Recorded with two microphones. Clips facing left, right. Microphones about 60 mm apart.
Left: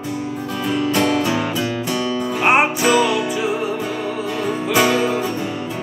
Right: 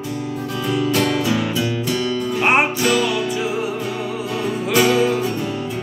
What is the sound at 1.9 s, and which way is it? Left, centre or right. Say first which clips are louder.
Music: even; left.